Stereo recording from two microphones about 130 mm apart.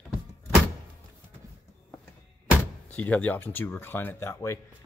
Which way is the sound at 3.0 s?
10° left (ahead or behind).